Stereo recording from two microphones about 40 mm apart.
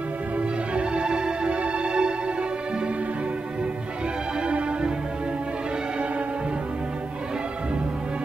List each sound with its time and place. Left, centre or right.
0.4 s music: right
4.5 s music: right